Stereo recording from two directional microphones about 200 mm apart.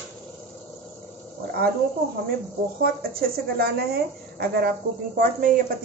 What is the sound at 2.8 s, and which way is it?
A woman's voice, 50° right (ahead or behind).